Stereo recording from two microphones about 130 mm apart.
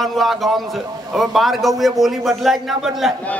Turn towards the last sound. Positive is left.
turn(degrees=0)  # may be behind; listen again after turning